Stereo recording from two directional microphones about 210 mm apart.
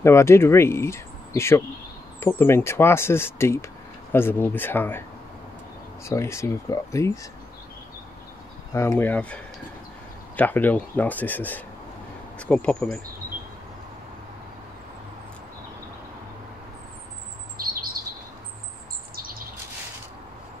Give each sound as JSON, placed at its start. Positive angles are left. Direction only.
{"t": 0.0, "sound": "speech", "side_deg": 10}
{"t": 6.0, "sound": "speech", "side_deg": 15}
{"t": 8.7, "sound": "speech", "side_deg": 10}